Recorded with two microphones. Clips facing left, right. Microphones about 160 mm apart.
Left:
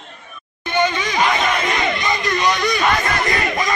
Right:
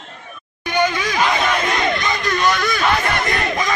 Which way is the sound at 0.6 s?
10° right (ahead or behind).